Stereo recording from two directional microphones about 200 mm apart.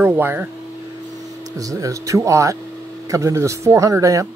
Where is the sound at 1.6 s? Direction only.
15° right (ahead or behind).